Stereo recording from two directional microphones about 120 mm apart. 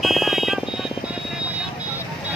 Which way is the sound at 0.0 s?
Centre (ahead or behind).